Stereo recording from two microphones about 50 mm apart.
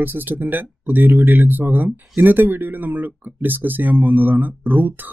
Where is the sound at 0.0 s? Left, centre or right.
Right.